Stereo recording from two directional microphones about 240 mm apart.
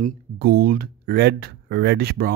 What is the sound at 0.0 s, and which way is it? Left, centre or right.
Speech, right.